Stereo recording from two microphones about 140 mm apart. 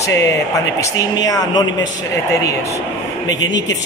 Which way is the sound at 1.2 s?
25° left (ahead or behind).